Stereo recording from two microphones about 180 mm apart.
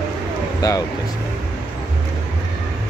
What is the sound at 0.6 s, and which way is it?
Speech, 20° left (ahead or behind).